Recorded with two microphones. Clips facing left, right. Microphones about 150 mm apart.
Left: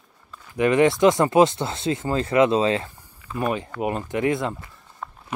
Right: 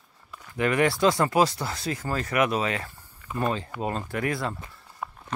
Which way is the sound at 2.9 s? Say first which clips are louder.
Left 2 dB; 15° left (ahead or behind).